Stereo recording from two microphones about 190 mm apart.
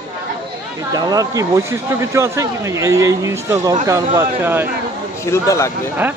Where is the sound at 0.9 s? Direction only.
20° right (ahead or behind).